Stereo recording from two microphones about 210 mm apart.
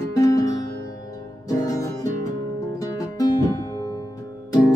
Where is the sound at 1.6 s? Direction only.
15° left (ahead or behind).